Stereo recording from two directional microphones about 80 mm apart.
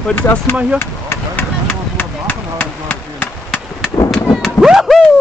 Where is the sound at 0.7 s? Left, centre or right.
Left.